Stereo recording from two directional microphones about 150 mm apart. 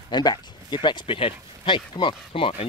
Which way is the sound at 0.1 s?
30° left (ahead or behind).